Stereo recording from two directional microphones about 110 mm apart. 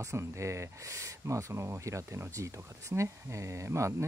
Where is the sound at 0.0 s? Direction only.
25° right (ahead or behind).